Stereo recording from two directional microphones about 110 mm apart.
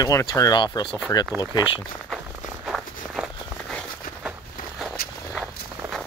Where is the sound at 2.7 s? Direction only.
5° right (ahead or behind).